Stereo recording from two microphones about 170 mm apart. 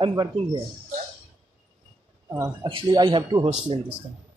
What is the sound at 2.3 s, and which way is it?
Speech, 20° right (ahead or behind).